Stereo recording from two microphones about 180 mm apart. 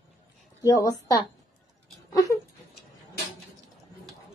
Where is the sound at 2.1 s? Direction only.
20° left (ahead or behind).